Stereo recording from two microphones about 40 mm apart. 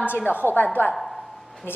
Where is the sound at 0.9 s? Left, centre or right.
Centre.